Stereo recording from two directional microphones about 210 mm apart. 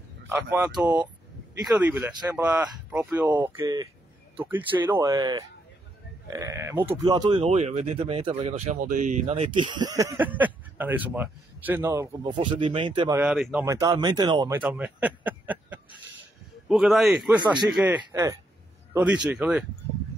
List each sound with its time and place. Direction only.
0.3 s speech: 10° right (ahead or behind)
7.4 s speech: 30° right (ahead or behind)
13.1 s speech: 5° right (ahead or behind)
14.6 s a man's voice: 5° right (ahead or behind)